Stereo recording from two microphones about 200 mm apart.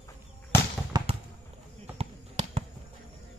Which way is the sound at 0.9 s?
20° right (ahead or behind).